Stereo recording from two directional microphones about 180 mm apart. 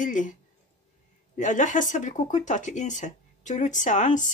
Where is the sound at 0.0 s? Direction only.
45° left (ahead or behind).